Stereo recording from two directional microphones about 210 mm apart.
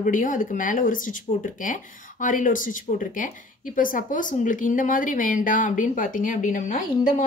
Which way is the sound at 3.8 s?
40° left (ahead or behind).